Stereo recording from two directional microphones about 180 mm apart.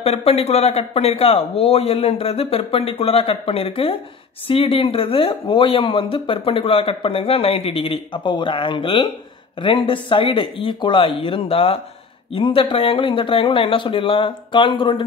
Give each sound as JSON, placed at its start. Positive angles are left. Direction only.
{"t": 0.0, "sound": "speech", "side_deg": 35}